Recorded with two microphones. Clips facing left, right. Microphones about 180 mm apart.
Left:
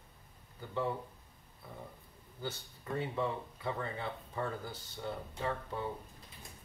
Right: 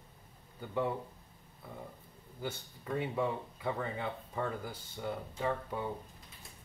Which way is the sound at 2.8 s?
10° right (ahead or behind).